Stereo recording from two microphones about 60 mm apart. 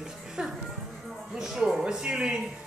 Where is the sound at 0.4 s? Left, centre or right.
Centre.